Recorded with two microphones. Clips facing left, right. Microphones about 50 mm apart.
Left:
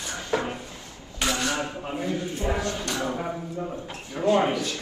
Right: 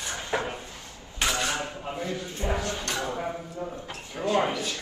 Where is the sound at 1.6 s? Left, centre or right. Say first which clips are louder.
Left 3 dB; left.